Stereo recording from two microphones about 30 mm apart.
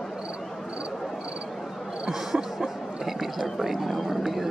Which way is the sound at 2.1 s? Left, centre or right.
Centre.